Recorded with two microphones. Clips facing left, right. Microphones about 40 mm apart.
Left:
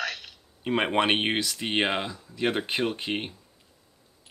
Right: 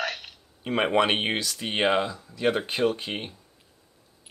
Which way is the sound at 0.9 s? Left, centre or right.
Left.